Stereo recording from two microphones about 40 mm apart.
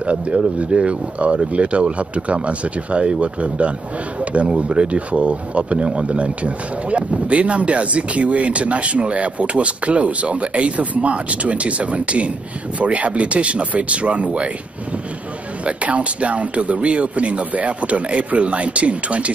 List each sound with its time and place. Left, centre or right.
0.0 s speech: right
15.6 s speech: right